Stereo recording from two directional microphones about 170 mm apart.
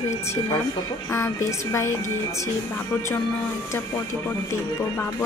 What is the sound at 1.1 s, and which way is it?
Speech, 15° left (ahead or behind).